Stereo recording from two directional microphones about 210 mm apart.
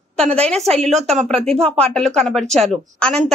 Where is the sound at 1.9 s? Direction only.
5° left (ahead or behind).